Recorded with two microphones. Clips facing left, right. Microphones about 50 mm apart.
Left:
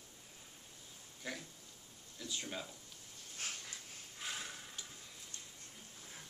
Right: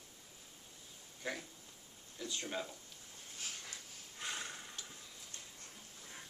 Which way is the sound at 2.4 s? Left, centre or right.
Centre.